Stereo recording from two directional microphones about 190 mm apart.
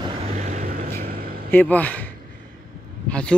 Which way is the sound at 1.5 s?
10° left (ahead or behind).